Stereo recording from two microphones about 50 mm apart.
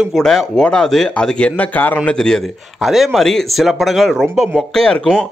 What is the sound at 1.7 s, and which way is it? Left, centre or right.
Speech, left.